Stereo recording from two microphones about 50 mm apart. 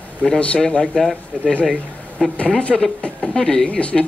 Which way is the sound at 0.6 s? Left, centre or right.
Centre.